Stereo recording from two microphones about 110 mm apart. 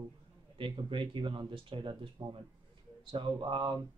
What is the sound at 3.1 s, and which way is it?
Speech, 45° right (ahead or behind).